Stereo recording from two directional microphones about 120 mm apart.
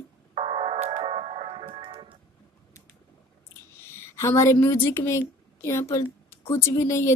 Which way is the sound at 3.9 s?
20° left (ahead or behind).